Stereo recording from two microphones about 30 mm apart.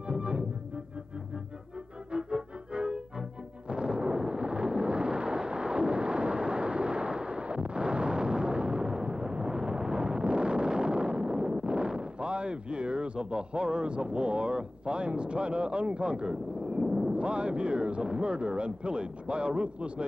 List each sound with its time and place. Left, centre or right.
0.1 s music: right
2.1 s music: right
4.3 s a sound: right
12.0 s speech: right
16.8 s eruption: centre
17.1 s speech: right